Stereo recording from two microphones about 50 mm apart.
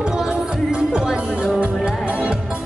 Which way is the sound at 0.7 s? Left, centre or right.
Centre.